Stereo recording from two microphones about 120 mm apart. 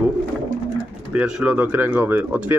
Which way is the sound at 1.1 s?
10° right (ahead or behind).